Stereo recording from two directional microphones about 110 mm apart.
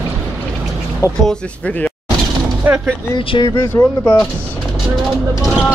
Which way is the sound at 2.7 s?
15° right (ahead or behind).